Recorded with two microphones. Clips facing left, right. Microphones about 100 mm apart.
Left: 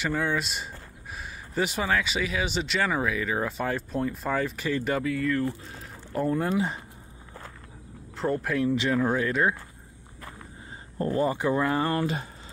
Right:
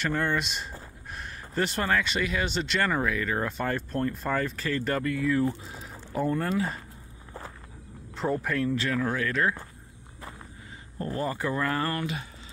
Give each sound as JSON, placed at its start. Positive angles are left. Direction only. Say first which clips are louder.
{"t": 0.0, "sound": "speech", "louder": "even", "side_deg": 5}
{"t": 5.3, "sound": "speech", "louder": "right 2 dB", "side_deg": -20}
{"t": 5.7, "sound": "boiling", "louder": "even", "side_deg": -5}
{"t": 8.2, "sound": "speech", "louder": "left 1 dB", "side_deg": 0}
{"t": 8.5, "sound": "speech", "louder": "left 3 dB", "side_deg": 15}
{"t": 11.0, "sound": "speech", "louder": "left 5 dB", "side_deg": 30}